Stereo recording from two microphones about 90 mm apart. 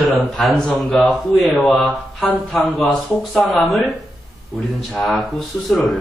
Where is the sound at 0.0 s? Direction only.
Centre (ahead or behind).